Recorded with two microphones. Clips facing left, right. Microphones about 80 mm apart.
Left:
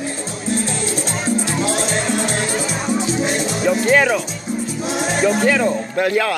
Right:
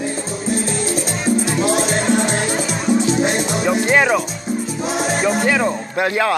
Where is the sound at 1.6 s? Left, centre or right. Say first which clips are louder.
Right 2 dB; centre.